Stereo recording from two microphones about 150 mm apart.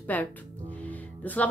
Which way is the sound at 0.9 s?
10° left (ahead or behind).